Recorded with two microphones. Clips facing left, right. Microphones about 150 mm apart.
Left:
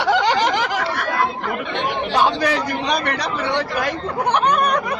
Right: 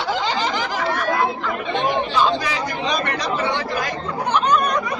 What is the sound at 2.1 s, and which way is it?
Speech, 60° left (ahead or behind).